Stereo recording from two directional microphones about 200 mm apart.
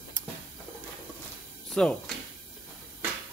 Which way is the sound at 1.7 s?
Centre (ahead or behind).